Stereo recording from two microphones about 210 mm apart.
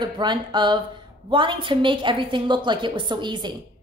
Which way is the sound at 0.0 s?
20° right (ahead or behind).